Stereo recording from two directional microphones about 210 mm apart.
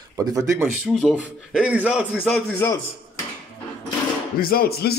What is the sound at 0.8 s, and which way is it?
A man's voice, centre (ahead or behind).